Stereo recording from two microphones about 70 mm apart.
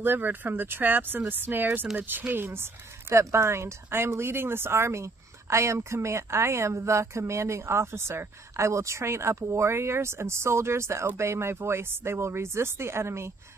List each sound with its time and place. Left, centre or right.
0.0 s speech: right